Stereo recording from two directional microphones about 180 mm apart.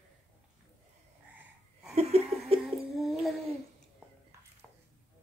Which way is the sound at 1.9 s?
35° right (ahead or behind).